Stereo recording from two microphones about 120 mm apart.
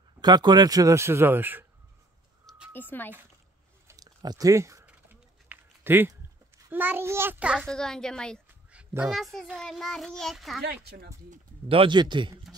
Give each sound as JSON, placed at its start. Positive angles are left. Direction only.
{"t": 0.2, "sound": "speech", "side_deg": -35}
{"t": 2.7, "sound": "speech", "side_deg": 15}
{"t": 3.8, "sound": "a sound", "side_deg": -30}
{"t": 6.7, "sound": "a child's voice", "side_deg": -15}
{"t": 7.6, "sound": "a child's voice", "side_deg": 5}
{"t": 8.7, "sound": "a child's voice", "side_deg": -10}
{"t": 11.7, "sound": "speech", "side_deg": -45}